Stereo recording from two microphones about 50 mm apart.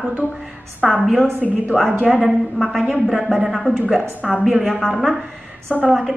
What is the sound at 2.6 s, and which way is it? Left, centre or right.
Speech, centre.